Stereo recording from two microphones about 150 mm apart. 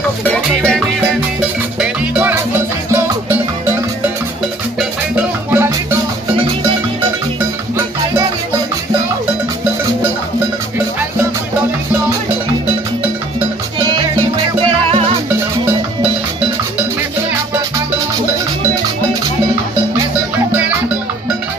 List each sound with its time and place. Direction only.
0.3 s music: 5° left (ahead or behind)
1.8 s music: 10° right (ahead or behind)
4.7 s music: 10° right (ahead or behind)
13.7 s music: 30° right (ahead or behind)
14.9 s music: 40° right (ahead or behind)